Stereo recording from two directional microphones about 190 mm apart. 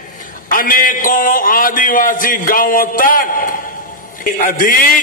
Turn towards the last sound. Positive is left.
turn(degrees=45)  # may be behind; listen again after turning